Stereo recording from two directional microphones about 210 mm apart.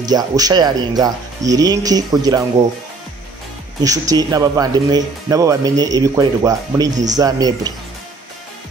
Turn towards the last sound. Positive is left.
turn(degrees=-20)  # may be behind; listen again after turning